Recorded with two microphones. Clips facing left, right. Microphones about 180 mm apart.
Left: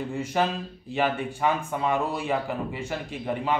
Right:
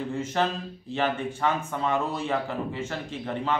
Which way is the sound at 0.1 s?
10° left (ahead or behind).